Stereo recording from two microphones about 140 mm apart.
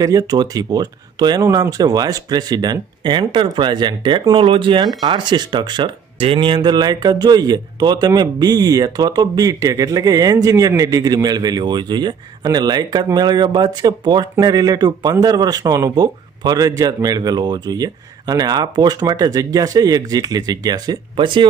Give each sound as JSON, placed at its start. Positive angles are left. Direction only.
{"t": 0.0, "sound": "speech", "side_deg": -30}